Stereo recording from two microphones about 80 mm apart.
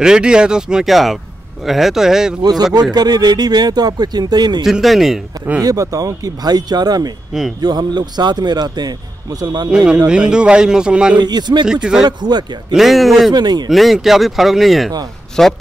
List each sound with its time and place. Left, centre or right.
0.0 s a man's voice: centre
2.4 s speech: right
4.6 s a man's voice: centre
5.6 s speech: right
7.3 s a man's voice: centre
7.6 s speech: right
9.7 s a man's voice: centre
11.1 s speech: right
11.6 s a man's voice: centre
12.0 s speech: right
12.7 s a man's voice: centre
13.3 s speech: right
13.7 s a man's voice: centre